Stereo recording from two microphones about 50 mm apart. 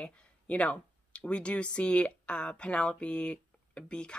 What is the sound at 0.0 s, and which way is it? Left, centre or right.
Speech, left.